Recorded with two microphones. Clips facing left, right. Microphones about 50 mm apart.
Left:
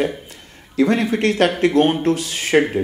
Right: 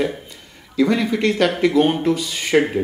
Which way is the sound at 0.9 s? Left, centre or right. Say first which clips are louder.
Left 1 dB; left.